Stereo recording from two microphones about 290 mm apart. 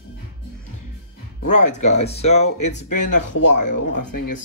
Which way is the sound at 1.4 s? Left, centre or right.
Left.